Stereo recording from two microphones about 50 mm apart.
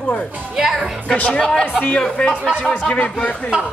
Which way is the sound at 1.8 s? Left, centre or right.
Left.